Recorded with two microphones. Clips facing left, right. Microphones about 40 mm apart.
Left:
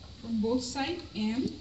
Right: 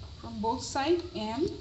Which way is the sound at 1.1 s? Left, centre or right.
Centre.